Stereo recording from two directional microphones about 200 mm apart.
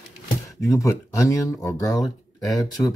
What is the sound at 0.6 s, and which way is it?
Speech, 15° left (ahead or behind).